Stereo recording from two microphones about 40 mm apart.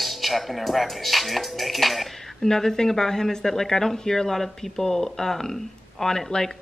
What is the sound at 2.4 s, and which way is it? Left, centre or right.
Speech, centre.